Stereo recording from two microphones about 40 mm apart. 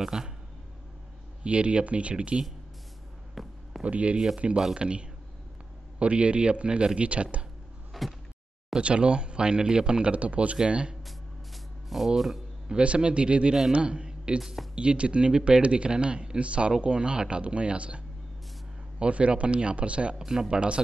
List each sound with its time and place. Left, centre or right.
0.0 s speech: centre
1.4 s speech: right
3.4 s speech: centre
3.8 s speech: right
8.0 s door: centre
8.7 s speech: right
10.1 s speech: right
11.1 s a sound: centre
12.6 s a man's voice: right
14.4 s speech: centre
14.8 s speech: right
20.2 s speech: centre